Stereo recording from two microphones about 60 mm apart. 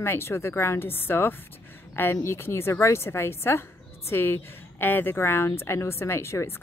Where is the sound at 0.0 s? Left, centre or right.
Left.